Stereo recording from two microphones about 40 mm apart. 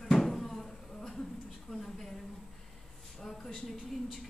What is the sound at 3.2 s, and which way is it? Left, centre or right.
Speech, centre.